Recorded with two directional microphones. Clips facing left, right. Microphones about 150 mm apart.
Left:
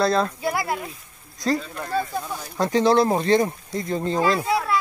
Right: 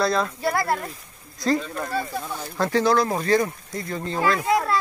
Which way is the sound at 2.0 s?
15° left (ahead or behind).